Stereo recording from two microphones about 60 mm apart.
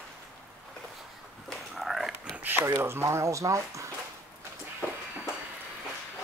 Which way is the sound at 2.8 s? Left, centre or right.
Right.